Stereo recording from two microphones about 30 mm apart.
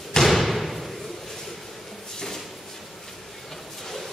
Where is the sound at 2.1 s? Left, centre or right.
Centre.